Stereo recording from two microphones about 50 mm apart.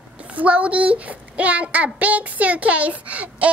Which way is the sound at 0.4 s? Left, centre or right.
Right.